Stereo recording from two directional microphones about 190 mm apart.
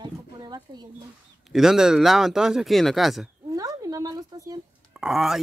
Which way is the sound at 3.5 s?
20° right (ahead or behind).